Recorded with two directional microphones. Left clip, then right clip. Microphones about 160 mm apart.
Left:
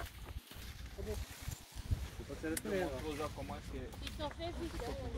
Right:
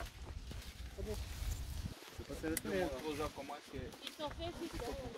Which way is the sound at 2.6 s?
60° right (ahead or behind).